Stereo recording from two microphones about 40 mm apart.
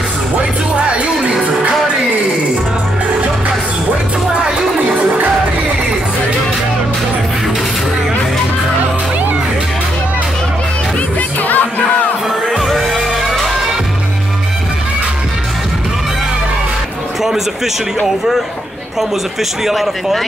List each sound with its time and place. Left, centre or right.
0.4 s music: right
4.4 s music: centre
11.1 s music: left
12.5 s music: centre
18.0 s speech: centre
19.6 s speech: centre